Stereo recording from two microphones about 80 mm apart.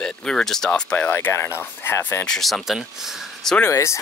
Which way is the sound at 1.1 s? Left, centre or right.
Left.